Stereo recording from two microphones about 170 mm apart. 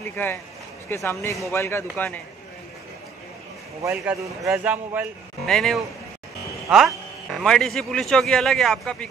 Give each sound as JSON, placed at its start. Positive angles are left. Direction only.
{"t": 0.0, "sound": "a man's voice", "side_deg": 10}
{"t": 3.9, "sound": "speech", "side_deg": -5}